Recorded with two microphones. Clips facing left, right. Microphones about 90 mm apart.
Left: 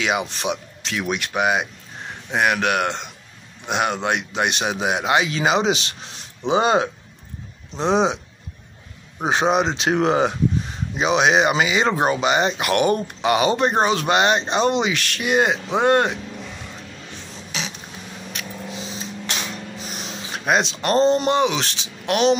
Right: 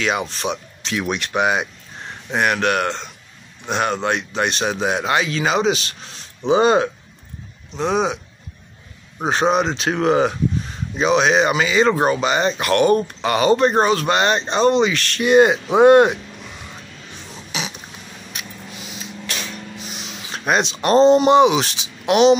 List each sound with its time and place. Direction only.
0.0 s speech: 15° left (ahead or behind)
0.8 s speech: centre (ahead or behind); by 8.2 s 25° left (ahead or behind)
9.2 s speech: 15° left (ahead or behind); by 16.2 s 10° right (ahead or behind)
17.5 s creak: 10° right (ahead or behind)
18.3 s a sound: 15° right (ahead or behind)
18.7 s a sound: 30° left (ahead or behind)
19.8 s music: 40° left (ahead or behind)
20.4 s speech: centre (ahead or behind)
20.9 s speech: 15° right (ahead or behind)